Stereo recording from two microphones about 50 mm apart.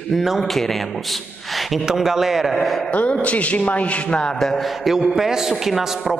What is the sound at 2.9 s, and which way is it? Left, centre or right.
A man's voice, left.